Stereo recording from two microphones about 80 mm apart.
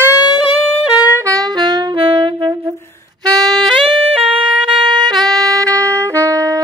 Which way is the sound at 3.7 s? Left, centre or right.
Right.